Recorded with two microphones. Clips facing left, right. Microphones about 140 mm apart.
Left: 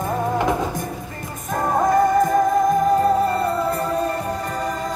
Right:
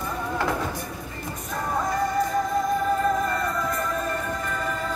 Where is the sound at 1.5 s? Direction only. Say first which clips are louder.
Left 9 dB; 50° left (ahead or behind).